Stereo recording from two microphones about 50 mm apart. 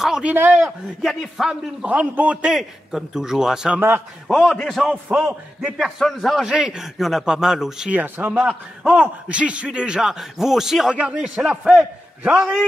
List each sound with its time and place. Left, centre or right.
0.2 s a man's voice: right
1.4 s a man's voice: centre
1.9 s a man's voice: right
2.5 s a man's voice: centre
5.1 s a man's voice: centre
5.8 s a man's voice: centre
6.4 s a man's voice: centre
7.0 s a man's voice: centre
7.9 s a man's voice: right
8.4 s a man's voice: centre
9.0 s a man's voice: right